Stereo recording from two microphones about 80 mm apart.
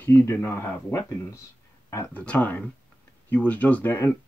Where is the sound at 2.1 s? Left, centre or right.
Centre.